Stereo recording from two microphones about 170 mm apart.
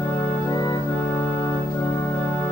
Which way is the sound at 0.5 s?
25° left (ahead or behind).